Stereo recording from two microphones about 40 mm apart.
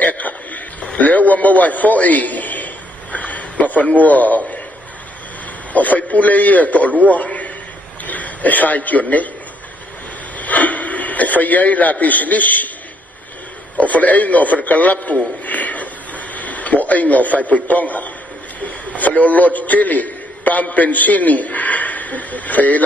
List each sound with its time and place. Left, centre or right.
0.0 s a sound: left
5.7 s a man's voice: left
7.1 s a sound: left
8.0 s a man's voice: left
10.3 s radio: left
13.7 s a man's voice: left